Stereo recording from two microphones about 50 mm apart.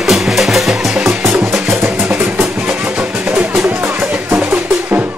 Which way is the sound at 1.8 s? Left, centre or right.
Right.